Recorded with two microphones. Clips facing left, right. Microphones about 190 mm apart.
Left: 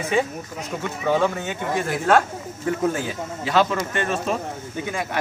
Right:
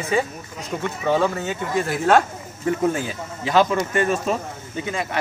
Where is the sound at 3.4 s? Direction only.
5° right (ahead or behind).